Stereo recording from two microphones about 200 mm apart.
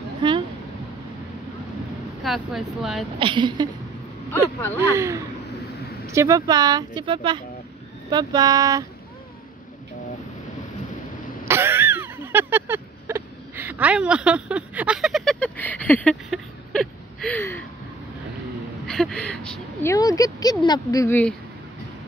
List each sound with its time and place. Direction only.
0.2 s a sound: 25° right (ahead or behind)
2.2 s speech: centre (ahead or behind)
3.2 s speech: 25° right (ahead or behind)
4.9 s speech: 15° right (ahead or behind)
11.4 s a sound: 10° right (ahead or behind); by 17.6 s 10° left (ahead or behind)
18.9 s speech: 5° left (ahead or behind)
19.9 s speech: 15° left (ahead or behind)